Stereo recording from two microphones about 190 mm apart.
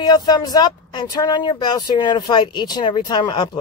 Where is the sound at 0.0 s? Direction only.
20° left (ahead or behind).